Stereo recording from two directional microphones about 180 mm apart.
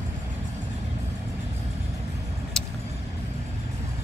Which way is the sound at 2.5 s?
5° left (ahead or behind).